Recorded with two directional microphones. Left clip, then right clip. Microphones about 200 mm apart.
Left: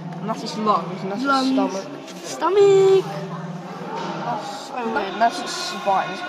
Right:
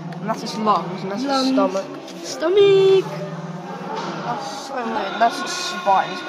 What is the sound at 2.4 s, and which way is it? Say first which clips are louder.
Speech: right 1 dB; 30° left (ahead or behind).